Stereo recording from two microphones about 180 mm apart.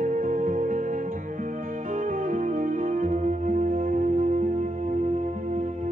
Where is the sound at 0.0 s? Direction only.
45° right (ahead or behind).